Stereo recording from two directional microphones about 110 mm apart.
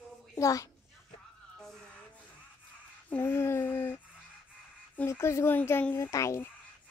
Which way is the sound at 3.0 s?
20° left (ahead or behind).